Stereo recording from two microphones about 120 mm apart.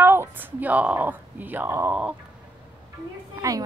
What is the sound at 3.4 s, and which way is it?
Speech, 30° right (ahead or behind).